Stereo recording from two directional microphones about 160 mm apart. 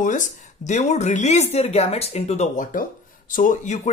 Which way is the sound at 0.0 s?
55° left (ahead or behind).